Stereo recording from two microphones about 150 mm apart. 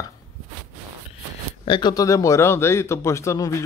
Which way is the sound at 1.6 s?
35° left (ahead or behind).